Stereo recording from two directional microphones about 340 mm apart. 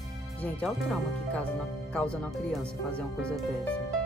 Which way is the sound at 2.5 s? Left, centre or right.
Centre.